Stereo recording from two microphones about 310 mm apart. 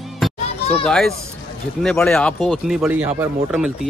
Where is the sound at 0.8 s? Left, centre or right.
Centre.